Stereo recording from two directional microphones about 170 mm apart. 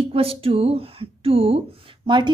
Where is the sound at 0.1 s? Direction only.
35° right (ahead or behind).